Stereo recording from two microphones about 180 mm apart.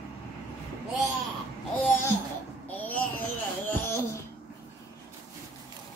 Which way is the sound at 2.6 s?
10° left (ahead or behind).